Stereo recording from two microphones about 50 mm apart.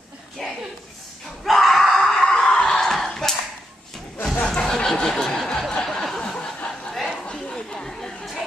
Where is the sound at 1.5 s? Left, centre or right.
Centre.